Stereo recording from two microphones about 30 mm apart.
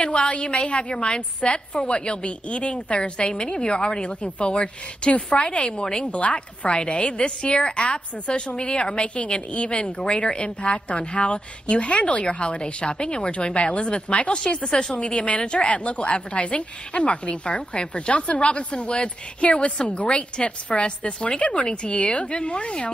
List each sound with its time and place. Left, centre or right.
0.0 s a woman's voice: left
5.1 s a woman's voice: left
6.1 s a woman's voice: left
14.9 s a woman's voice: left